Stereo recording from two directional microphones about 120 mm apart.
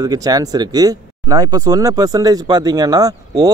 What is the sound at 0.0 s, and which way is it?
Speech, 30° right (ahead or behind).